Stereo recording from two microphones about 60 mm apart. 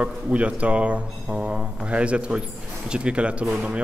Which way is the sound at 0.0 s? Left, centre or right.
Right.